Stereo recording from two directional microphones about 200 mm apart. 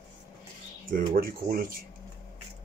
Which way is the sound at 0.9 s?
45° right (ahead or behind).